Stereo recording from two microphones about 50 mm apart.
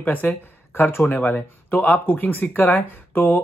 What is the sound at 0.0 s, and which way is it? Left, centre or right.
Speech, left.